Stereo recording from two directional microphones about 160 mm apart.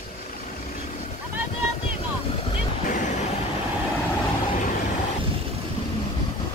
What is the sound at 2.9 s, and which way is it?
Vehicle, 50° left (ahead or behind).